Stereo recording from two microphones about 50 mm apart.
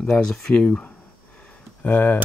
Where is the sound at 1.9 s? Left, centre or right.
Left.